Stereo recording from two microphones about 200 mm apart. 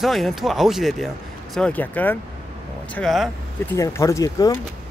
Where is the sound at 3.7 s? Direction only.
15° left (ahead or behind).